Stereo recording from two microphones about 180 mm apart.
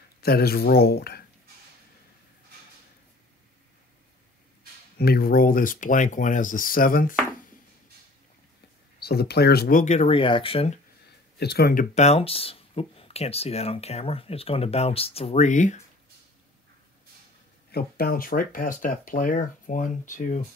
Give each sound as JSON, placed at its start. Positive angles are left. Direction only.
{"t": 0.2, "sound": "speech", "side_deg": 60}
{"t": 4.9, "sound": "speech", "side_deg": 60}
{"t": 9.0, "sound": "speech", "side_deg": 60}
{"t": 11.3, "sound": "speech", "side_deg": 65}
{"t": 17.6, "sound": "speech", "side_deg": 60}